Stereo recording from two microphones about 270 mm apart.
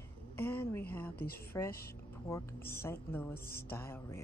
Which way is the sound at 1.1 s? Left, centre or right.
Left.